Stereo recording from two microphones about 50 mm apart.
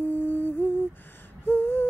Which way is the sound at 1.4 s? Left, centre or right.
Left.